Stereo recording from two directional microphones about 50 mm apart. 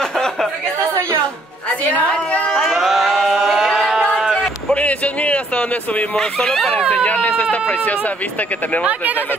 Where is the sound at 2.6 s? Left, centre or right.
Centre.